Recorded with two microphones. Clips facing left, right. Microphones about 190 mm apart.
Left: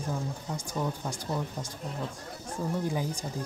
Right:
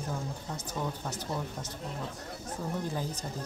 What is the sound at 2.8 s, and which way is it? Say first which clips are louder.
Speech: left 3 dB; 15° left (ahead or behind).